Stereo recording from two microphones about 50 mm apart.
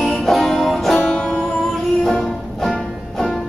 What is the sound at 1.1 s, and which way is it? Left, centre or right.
Music, centre.